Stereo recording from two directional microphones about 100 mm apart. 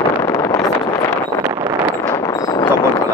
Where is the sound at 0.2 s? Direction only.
30° left (ahead or behind).